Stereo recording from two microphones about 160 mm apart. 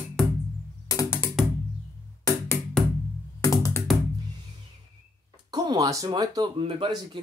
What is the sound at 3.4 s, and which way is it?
Music, 15° left (ahead or behind).